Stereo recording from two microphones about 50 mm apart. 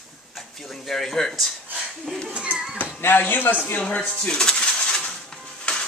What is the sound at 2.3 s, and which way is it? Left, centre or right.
Speech, right.